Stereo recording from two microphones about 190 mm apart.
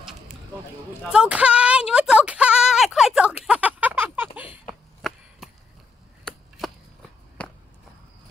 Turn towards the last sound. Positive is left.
turn(degrees=5)  # may be behind; listen again after turning